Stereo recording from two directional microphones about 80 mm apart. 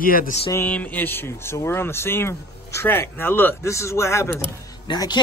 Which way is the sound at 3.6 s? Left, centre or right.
Left.